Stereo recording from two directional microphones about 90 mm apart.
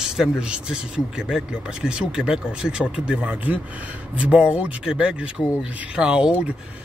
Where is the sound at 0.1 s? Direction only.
5° right (ahead or behind).